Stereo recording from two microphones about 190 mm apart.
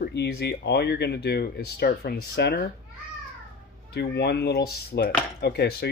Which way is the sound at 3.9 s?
60° left (ahead or behind).